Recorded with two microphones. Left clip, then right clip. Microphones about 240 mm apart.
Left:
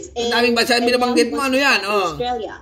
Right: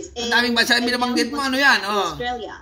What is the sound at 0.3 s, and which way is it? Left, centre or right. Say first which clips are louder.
A man's voice: left 1 dB; centre.